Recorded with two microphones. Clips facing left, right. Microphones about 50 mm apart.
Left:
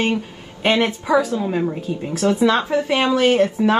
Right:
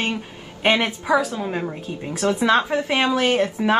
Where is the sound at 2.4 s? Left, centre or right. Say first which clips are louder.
Even; centre.